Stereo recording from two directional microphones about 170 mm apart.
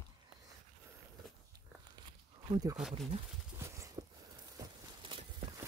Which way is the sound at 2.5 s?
20° right (ahead or behind).